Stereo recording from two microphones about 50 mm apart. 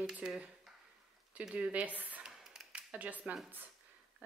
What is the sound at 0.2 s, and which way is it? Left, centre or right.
Speech, centre.